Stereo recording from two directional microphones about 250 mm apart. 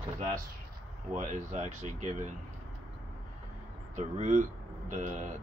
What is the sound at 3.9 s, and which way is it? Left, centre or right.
Speech, right.